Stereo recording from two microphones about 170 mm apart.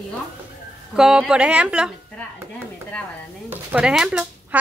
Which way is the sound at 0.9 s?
5° right (ahead or behind).